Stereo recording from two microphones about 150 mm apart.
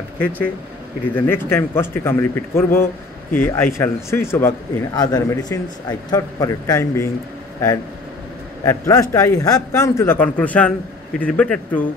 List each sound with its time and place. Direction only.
1.1 s a man's voice: 15° left (ahead or behind)
8.6 s a man's voice: 20° left (ahead or behind)